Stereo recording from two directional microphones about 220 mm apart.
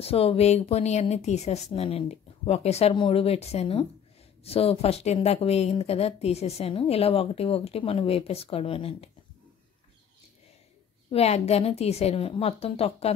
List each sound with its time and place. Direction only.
0.0 s speech: 25° left (ahead or behind)
11.1 s speech: 30° left (ahead or behind)